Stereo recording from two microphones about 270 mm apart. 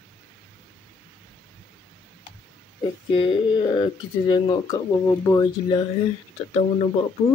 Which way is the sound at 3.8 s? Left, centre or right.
Centre.